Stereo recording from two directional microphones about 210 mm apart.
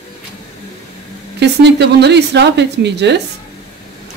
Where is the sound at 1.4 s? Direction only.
55° right (ahead or behind).